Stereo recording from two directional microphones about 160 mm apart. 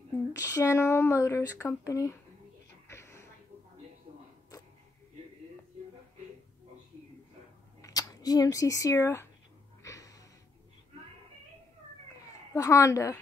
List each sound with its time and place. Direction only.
0.3 s speech: 20° left (ahead or behind)
2.9 s a sound: 15° left (ahead or behind)
7.8 s speech: 20° left (ahead or behind)
9.8 s music: 20° left (ahead or behind)
12.5 s a woman's voice: 20° left (ahead or behind)